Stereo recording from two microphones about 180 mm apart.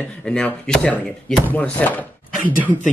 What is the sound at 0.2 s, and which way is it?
Speech, 5° left (ahead or behind).